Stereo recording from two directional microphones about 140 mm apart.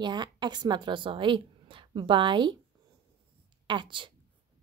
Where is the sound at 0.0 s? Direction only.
30° right (ahead or behind).